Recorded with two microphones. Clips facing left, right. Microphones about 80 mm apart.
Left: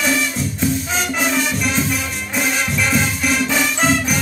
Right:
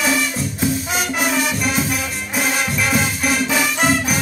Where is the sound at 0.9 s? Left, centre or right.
Centre.